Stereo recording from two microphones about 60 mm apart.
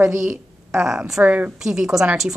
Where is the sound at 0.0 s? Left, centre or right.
Right.